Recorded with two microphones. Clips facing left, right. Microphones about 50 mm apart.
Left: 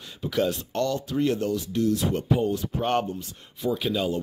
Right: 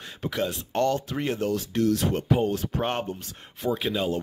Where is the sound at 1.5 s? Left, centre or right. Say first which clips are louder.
Right 1 dB; right.